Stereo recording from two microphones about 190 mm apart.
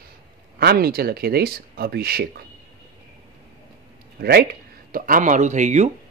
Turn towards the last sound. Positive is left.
turn(degrees=-40)  # may be behind; listen again after turning